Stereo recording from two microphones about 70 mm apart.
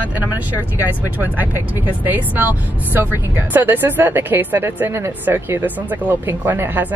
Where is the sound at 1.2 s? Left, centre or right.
Right.